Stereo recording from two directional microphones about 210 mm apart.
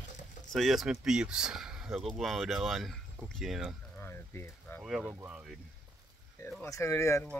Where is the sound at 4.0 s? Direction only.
10° left (ahead or behind).